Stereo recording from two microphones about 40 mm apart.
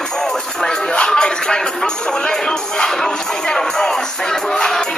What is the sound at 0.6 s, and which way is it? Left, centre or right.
Speech, left.